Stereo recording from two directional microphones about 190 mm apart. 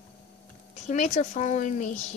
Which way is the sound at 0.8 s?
40° left (ahead or behind).